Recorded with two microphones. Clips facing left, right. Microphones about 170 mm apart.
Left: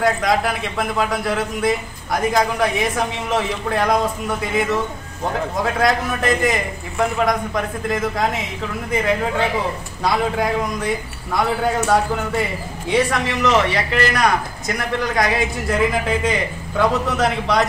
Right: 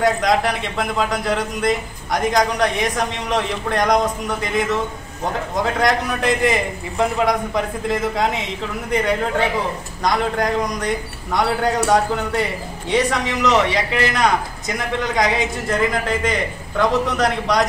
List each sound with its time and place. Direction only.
0.0 s a man's voice: centre (ahead or behind)
13.4 s a man's voice: 15° right (ahead or behind)
14.2 s a man's voice: centre (ahead or behind)